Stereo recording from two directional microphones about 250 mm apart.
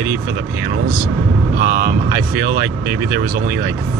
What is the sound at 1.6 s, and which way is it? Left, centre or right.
Speech, right.